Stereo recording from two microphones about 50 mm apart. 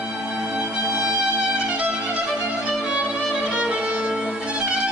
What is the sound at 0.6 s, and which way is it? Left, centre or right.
Music, right.